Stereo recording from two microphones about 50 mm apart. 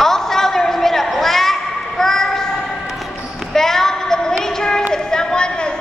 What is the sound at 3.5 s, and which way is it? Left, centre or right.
Basketball bounce, centre.